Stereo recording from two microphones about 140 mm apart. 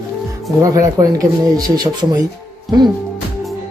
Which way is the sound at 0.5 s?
25° right (ahead or behind).